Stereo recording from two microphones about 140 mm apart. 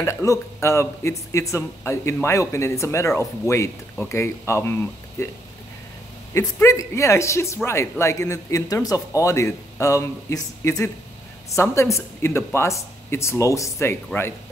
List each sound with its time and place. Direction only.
0.0 s speech: 20° left (ahead or behind)